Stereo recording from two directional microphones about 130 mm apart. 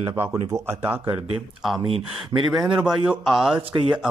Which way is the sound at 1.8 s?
45° right (ahead or behind).